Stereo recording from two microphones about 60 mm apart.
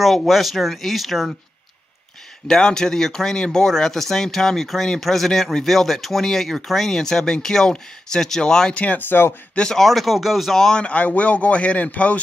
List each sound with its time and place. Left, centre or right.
0.0 s speech: centre
2.4 s a man's voice: centre
9.6 s speech: centre
10.8 s a man's voice: left